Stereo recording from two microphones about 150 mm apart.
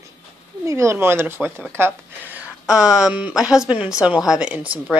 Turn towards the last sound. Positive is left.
turn(degrees=-10)  # may be behind; listen again after turning